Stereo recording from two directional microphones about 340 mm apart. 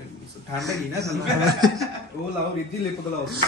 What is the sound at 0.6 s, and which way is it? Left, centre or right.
Speech, centre.